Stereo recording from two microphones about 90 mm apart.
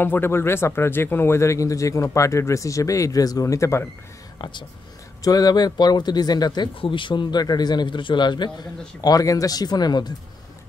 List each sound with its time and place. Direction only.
0.0 s speech: 25° left (ahead or behind)
4.4 s speech: 60° left (ahead or behind)
5.2 s a man's voice: 45° left (ahead or behind)
6.7 s a man's voice: 80° left; by 10.1 s 50° left (ahead or behind)